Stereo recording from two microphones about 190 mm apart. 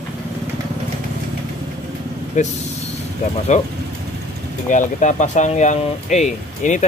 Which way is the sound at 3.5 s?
40° left (ahead or behind).